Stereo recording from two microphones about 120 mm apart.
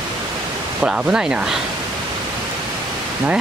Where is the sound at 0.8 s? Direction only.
10° right (ahead or behind).